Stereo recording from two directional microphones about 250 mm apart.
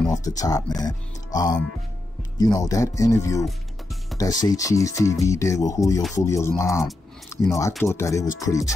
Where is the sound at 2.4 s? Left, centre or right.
Centre.